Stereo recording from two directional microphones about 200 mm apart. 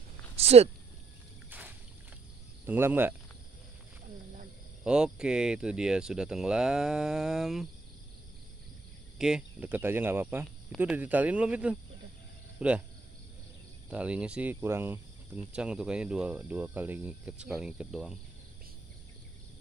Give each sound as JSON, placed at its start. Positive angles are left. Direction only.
{"t": 0.4, "sound": "speech", "side_deg": -30}
{"t": 2.6, "sound": "speech", "side_deg": -10}
{"t": 4.8, "sound": "speech", "side_deg": -5}
{"t": 9.2, "sound": "speech", "side_deg": -5}
{"t": 13.8, "sound": "speech", "side_deg": -5}